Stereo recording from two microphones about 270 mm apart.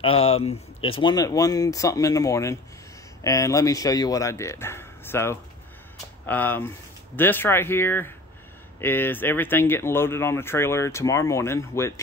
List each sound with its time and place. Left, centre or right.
0.0 s speech: left